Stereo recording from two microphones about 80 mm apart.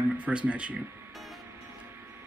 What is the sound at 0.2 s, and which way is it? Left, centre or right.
Speech, centre.